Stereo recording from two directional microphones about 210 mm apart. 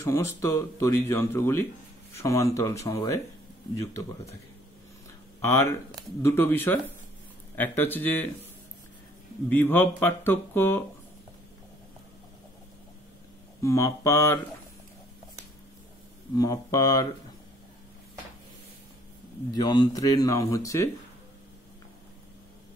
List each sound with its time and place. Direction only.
0.0 s speech: 15° left (ahead or behind)
5.4 s speech: 10° left (ahead or behind)
9.5 s speech: 10° left (ahead or behind)
13.6 s speech: 15° left (ahead or behind)
16.3 s speech: 15° left (ahead or behind)
19.5 s speech: 20° left (ahead or behind)